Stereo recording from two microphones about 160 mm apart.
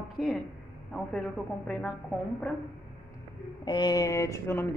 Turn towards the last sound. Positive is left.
turn(degrees=15)  # may be behind; listen again after turning